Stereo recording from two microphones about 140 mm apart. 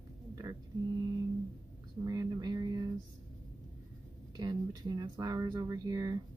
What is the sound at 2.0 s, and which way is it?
Speech, 25° right (ahead or behind).